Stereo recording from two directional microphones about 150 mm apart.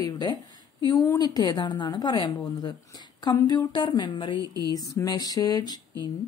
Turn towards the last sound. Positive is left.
turn(degrees=30)  # may be behind; listen again after turning